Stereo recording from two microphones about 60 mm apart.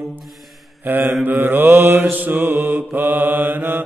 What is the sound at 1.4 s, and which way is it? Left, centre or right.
Mantra, right.